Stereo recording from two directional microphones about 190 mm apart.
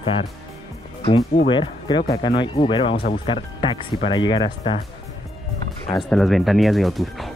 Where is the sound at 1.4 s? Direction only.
25° left (ahead or behind).